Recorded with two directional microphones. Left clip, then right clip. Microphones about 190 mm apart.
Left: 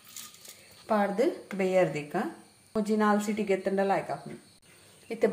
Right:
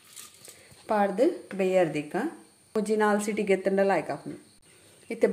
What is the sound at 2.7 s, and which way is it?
A woman's voice, 40° right (ahead or behind).